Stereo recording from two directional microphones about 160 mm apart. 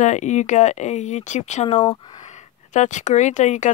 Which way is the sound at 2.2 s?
50° left (ahead or behind).